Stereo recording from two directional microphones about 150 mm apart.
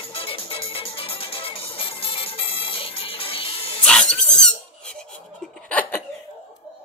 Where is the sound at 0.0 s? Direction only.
35° left (ahead or behind).